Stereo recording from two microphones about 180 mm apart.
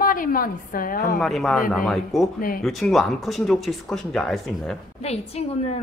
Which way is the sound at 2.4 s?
50° left (ahead or behind).